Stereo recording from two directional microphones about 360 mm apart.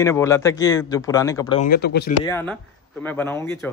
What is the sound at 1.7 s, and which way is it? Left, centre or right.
Speech, left.